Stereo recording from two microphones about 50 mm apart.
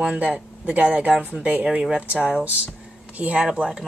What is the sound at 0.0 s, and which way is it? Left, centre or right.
Speech, right.